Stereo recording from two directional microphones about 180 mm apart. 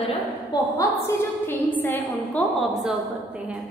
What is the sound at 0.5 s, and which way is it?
A woman's voice, 20° left (ahead or behind).